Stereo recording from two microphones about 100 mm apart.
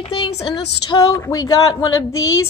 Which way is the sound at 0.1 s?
75° left (ahead or behind).